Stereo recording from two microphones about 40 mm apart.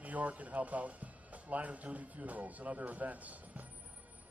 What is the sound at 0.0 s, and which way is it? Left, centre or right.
Speech, right.